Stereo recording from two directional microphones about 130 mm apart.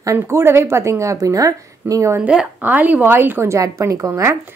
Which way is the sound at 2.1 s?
10° right (ahead or behind).